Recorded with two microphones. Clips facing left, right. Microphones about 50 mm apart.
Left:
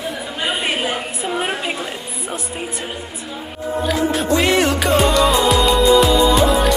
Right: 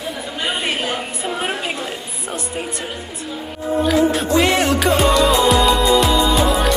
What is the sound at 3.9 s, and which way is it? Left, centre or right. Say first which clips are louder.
Music: right 1 dB; centre.